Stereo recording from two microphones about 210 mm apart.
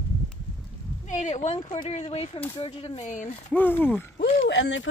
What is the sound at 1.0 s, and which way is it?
Speech, 35° left (ahead or behind).